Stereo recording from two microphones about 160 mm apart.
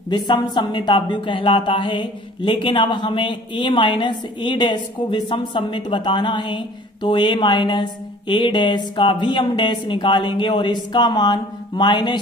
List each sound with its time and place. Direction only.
0.1 s speech: 30° left (ahead or behind)